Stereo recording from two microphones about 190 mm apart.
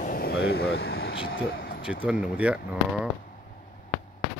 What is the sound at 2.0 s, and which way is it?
Speech, 5° right (ahead or behind).